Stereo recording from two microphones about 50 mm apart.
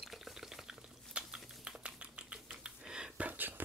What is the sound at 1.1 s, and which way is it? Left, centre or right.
Typing, right.